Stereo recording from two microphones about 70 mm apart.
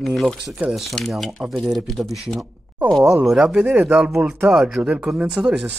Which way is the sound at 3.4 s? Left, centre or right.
Centre.